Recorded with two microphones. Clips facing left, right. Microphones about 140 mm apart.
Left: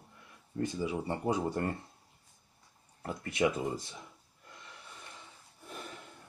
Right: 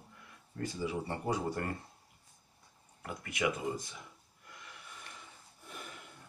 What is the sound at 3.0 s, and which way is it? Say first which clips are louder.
Speech: left 4 dB; 30° left (ahead or behind).